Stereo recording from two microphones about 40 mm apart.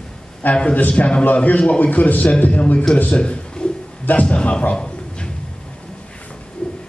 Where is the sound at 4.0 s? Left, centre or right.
Left.